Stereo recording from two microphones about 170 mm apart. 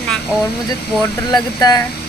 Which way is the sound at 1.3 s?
20° left (ahead or behind).